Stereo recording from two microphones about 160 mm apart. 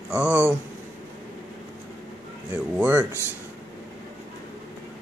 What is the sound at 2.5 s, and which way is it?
Speech, 15° right (ahead or behind).